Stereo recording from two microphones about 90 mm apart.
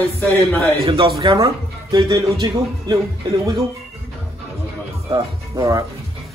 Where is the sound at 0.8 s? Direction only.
90° right.